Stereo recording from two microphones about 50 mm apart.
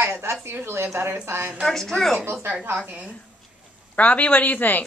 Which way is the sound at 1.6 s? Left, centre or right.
Centre.